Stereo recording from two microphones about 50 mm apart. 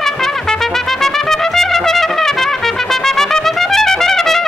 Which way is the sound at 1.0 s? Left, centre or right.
Centre.